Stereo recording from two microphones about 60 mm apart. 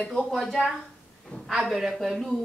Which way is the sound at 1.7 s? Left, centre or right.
Centre.